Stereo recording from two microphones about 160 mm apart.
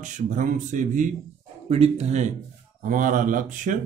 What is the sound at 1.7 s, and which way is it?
Speech, 40° right (ahead or behind).